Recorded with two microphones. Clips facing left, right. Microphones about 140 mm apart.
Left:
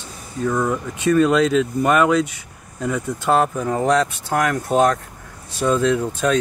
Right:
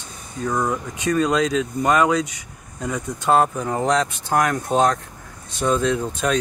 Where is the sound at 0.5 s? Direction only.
15° right (ahead or behind).